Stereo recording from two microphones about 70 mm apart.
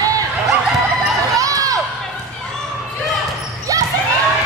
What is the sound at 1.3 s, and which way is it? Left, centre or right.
Crowd, right.